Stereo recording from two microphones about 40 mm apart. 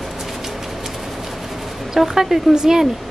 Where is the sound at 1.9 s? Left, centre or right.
Centre.